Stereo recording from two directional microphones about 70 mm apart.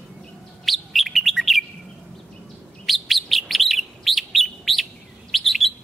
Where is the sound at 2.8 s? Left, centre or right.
Centre.